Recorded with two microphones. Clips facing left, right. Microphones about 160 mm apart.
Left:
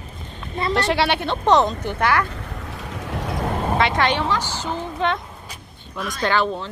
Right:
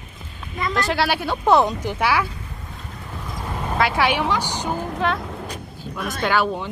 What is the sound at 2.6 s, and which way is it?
Vehicle, 80° left.